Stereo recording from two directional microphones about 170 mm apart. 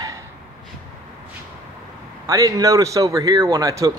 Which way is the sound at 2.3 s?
20° right (ahead or behind).